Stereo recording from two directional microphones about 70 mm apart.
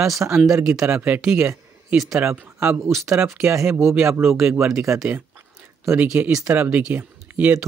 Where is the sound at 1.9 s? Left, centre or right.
Centre.